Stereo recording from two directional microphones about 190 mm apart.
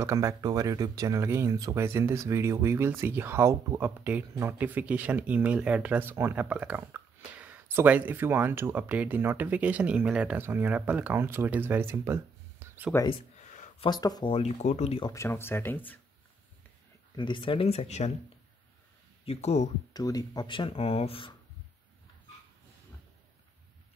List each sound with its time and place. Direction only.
0.0 s speech: 15° right (ahead or behind)
13.4 s a sound: 40° left (ahead or behind)
13.8 s speech: 20° left (ahead or behind)
15.0 s speech: 15° left (ahead or behind)
17.1 s speech: 25° left (ahead or behind)
19.2 s speech: 35° left (ahead or behind)
19.9 s speech: 20° left (ahead or behind)